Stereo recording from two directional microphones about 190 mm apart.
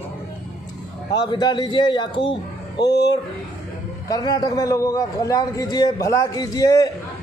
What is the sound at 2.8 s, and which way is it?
Speech, 60° left (ahead or behind).